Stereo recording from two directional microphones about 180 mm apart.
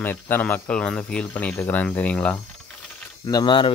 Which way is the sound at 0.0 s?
10° left (ahead or behind).